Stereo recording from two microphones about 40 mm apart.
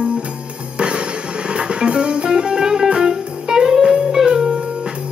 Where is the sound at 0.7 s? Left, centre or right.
Right.